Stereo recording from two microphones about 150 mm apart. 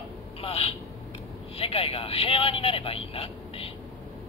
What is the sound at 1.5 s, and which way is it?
Speech, 40° left (ahead or behind).